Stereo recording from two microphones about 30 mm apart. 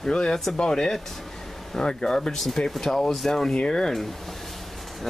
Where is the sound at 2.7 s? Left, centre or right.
Centre.